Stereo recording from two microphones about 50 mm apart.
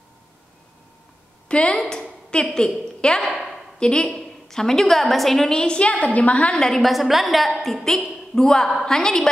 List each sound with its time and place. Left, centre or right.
1.5 s a woman's voice: centre
3.3 s a sound: centre
4.0 s a woman's voice: centre; by 6.6 s left
6.6 s a woman's voice: centre